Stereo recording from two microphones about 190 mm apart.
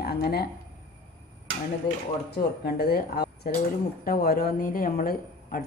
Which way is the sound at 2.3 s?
55° left (ahead or behind).